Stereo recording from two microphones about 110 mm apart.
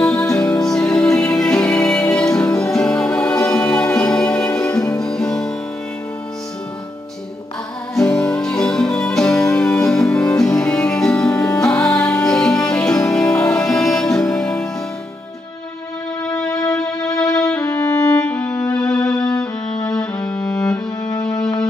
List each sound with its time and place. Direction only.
0.1 s music: 5° left (ahead or behind)
7.9 s music: 5° left (ahead or behind)
16.4 s music: 30° left (ahead or behind)
18.2 s violin: 10° left (ahead or behind)
19.0 s music: 5° left (ahead or behind)